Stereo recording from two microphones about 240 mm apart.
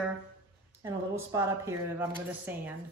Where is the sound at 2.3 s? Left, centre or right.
Centre.